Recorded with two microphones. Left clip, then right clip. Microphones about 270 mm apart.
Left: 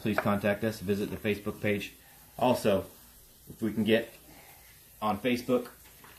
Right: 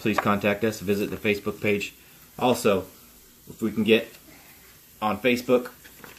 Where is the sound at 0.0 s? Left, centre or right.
Centre.